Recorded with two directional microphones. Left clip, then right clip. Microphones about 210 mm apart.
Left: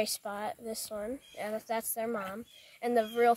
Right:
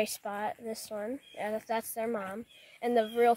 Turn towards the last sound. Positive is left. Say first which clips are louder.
# right 1 dB
turn(degrees=-25)  # may be behind; listen again after turning